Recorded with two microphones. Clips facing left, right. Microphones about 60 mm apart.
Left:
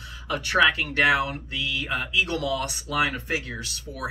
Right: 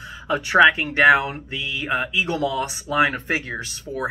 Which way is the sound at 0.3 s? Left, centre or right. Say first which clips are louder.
Right 6 dB; right.